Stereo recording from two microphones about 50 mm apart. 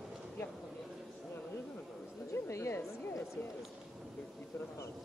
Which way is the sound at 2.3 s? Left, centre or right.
Left.